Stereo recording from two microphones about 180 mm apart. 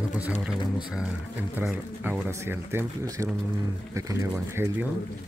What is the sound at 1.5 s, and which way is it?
Speech, 10° right (ahead or behind).